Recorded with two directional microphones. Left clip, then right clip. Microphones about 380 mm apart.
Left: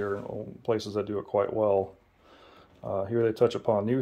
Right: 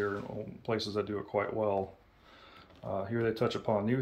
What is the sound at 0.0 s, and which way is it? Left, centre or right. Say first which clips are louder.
Speech: left 3 dB; left.